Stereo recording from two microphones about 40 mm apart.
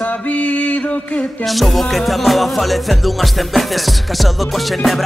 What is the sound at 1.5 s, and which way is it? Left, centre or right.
Music, centre.